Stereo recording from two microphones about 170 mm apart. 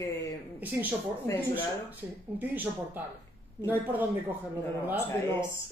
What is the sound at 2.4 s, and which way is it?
Speech, 10° right (ahead or behind).